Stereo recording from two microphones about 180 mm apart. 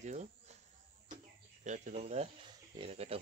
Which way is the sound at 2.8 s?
35° right (ahead or behind).